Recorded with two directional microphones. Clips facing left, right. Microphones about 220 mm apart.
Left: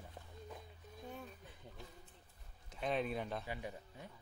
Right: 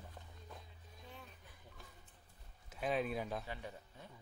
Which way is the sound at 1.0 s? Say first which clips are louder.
Left 7 dB; 45° left (ahead or behind).